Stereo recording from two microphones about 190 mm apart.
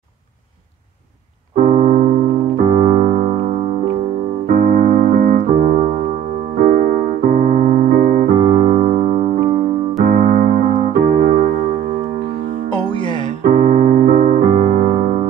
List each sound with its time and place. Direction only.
1.6 s keyboard: 40° right (ahead or behind)
2.6 s music: 30° right (ahead or behind)
4.5 s keyboard: 45° right (ahead or behind)
8.3 s electric piano: 30° right (ahead or behind)
10.0 s keyboard: 45° right (ahead or behind)
10.9 s music: 50° right (ahead or behind)
13.4 s keyboard: 40° right (ahead or behind)
14.4 s piano: 25° right (ahead or behind)
14.8 s music: 35° right (ahead or behind)